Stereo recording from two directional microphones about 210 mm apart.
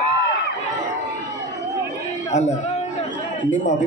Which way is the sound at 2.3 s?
35° left (ahead or behind).